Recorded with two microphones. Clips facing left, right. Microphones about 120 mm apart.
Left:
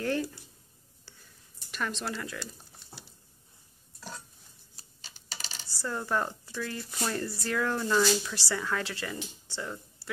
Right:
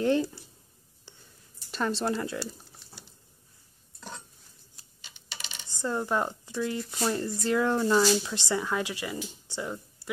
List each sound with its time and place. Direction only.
0.0 s speech: 20° right (ahead or behind)
1.1 s a sound: 20° right (ahead or behind)
1.7 s speech: 30° right (ahead or behind)
4.7 s coin: 35° left (ahead or behind)
5.7 s speech: 20° right (ahead or behind)